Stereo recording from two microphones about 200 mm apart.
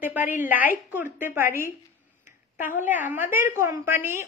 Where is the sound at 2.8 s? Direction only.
10° right (ahead or behind).